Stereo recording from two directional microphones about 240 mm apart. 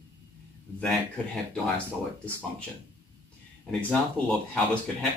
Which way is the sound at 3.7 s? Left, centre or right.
Centre.